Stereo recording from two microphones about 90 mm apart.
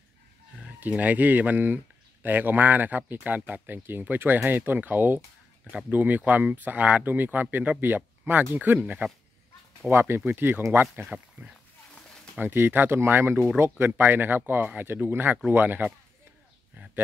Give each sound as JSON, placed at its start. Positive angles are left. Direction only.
{"t": 0.7, "sound": "speech", "side_deg": -20}
{"t": 9.8, "sound": "speech", "side_deg": -25}
{"t": 11.1, "sound": "speech", "side_deg": -15}
{"t": 12.4, "sound": "speech", "side_deg": -25}
{"t": 16.7, "sound": "a sound", "side_deg": -15}